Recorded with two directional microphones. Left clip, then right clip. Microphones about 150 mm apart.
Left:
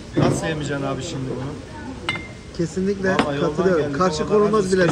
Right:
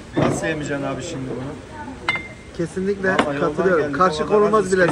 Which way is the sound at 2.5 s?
5° left (ahead or behind).